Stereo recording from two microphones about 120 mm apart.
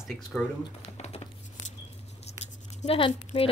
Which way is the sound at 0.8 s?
65° left (ahead or behind).